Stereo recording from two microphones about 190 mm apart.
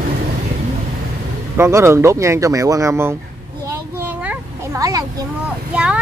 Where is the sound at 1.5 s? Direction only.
15° right (ahead or behind).